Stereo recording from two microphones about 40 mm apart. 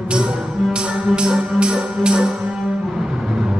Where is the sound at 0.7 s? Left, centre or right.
Right.